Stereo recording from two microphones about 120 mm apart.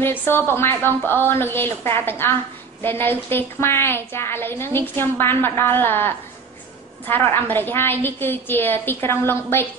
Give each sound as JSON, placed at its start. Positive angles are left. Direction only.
{"t": 0.0, "sound": "a woman's voice", "side_deg": 20}